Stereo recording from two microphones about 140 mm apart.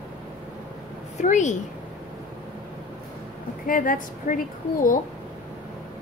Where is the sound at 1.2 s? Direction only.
60° left (ahead or behind).